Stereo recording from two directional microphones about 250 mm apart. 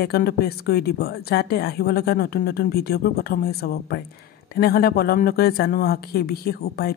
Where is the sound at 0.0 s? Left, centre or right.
Left.